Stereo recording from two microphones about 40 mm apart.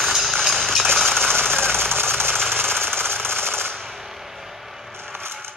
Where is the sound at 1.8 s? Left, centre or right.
Right.